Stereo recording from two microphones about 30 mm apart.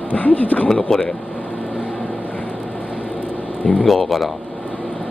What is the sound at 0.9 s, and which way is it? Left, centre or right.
Speech, centre.